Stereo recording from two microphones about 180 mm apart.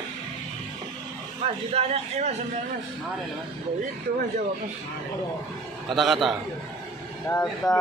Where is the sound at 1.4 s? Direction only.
35° right (ahead or behind).